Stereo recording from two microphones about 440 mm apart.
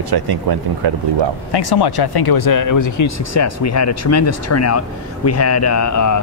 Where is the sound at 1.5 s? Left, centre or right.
Left.